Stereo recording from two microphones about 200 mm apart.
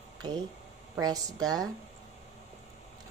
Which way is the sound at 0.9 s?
20° right (ahead or behind).